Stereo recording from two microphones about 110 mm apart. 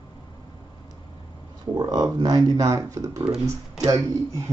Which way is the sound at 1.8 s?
40° right (ahead or behind).